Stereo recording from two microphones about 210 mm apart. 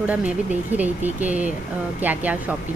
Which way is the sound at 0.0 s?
5° right (ahead or behind).